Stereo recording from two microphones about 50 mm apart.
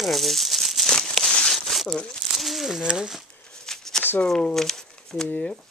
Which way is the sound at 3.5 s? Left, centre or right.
Centre.